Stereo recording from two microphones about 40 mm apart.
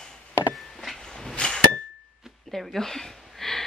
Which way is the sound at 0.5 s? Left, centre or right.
Centre.